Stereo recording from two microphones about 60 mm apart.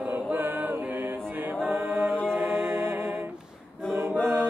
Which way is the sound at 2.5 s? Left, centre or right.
Right.